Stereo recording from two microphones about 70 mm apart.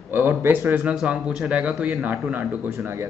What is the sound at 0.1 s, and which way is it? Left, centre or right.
Speech, right.